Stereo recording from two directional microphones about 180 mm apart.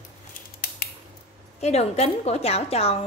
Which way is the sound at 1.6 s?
35° left (ahead or behind).